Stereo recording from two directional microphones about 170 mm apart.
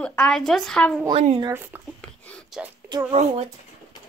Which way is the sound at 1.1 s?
35° right (ahead or behind).